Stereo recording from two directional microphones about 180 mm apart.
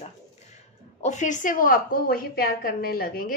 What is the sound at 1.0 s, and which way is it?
A woman's voice, 40° left (ahead or behind).